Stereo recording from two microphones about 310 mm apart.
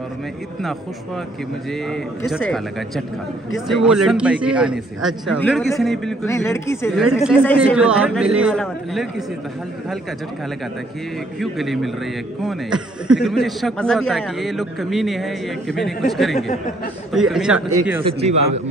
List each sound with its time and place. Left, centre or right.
1.7 s a man's voice: centre
3.6 s a man's voice: centre
7.2 s a man's voice: centre
11.3 s a man's voice: centre
17.6 s speech: right
18.0 s a man's voice: centre